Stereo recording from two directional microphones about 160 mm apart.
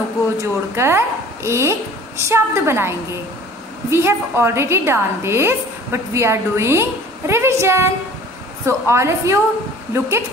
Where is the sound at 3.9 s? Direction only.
15° right (ahead or behind).